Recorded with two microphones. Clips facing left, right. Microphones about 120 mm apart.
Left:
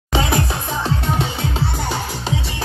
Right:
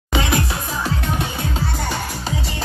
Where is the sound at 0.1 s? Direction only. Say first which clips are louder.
Left 1 dB; 30° left (ahead or behind).